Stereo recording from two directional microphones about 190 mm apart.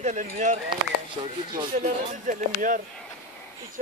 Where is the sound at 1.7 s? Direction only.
40° right (ahead or behind).